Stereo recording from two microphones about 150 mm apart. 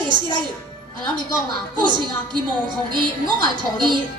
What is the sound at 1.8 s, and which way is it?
Speech, 30° right (ahead or behind).